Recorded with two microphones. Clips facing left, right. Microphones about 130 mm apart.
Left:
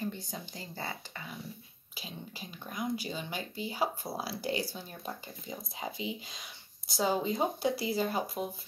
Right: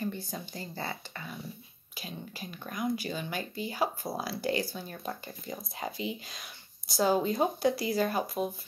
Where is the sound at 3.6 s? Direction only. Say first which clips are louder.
Right 1 dB; 20° left (ahead or behind).